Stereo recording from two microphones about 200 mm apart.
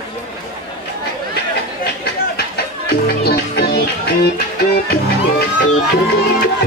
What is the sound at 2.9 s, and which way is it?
Speech, 50° left (ahead or behind).